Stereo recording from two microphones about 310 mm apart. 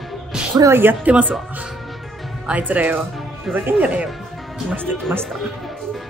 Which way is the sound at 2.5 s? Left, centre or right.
Centre.